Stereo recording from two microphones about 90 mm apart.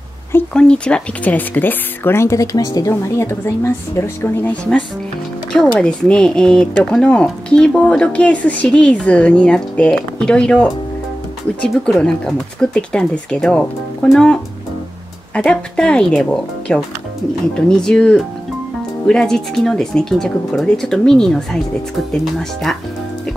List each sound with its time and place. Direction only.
0.5 s speech: 10° left (ahead or behind); by 2.9 s 45° left (ahead or behind)
2.9 s a woman's voice: 35° left (ahead or behind)
5.5 s speech: 10° left (ahead or behind)